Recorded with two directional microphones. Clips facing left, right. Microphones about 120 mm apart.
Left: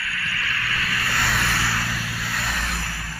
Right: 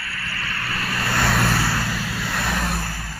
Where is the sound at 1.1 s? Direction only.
45° right (ahead or behind); by 3.0 s 30° right (ahead or behind).